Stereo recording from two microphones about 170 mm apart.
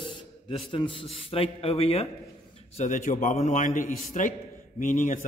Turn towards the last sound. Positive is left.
turn(degrees=50)  # may be behind; listen again after turning